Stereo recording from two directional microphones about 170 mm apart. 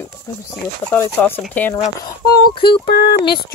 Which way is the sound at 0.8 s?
15° left (ahead or behind).